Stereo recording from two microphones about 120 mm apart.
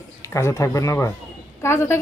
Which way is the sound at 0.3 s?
25° left (ahead or behind).